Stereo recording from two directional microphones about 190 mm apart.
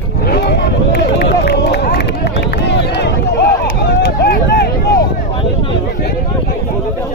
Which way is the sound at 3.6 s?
60° left (ahead or behind).